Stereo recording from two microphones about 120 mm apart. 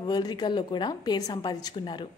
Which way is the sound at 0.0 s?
35° left (ahead or behind).